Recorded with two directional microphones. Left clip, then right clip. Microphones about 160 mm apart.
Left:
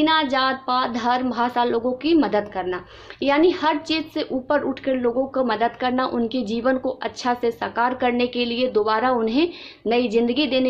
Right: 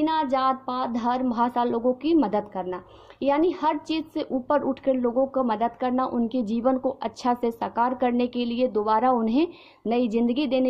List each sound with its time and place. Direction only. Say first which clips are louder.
0.0 s a woman's voice: left 4 dB; 40° right (ahead or behind)